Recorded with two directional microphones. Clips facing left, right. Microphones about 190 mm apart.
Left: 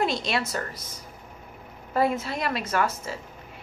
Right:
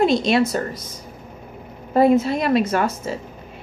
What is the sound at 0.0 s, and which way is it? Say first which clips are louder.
Speech: right 10 dB; 20° right (ahead or behind).